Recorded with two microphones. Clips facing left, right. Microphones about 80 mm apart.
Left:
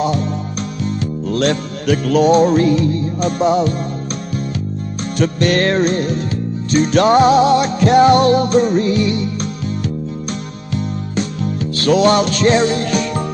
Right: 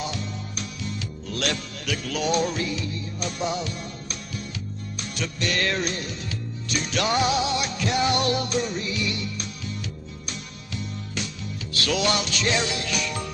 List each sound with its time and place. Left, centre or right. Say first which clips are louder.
0.0 s music: left 13 dB; left
5.2 s music: left 12 dB; left
11.4 s music: left 13 dB; left